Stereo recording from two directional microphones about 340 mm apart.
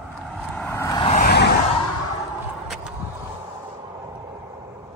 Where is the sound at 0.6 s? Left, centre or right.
Centre; by 1.5 s left.